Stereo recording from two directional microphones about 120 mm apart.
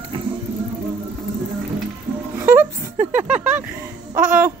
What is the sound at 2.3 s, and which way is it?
Music, 20° right (ahead or behind).